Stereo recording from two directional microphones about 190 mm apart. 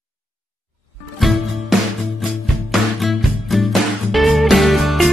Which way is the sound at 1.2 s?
Centre (ahead or behind).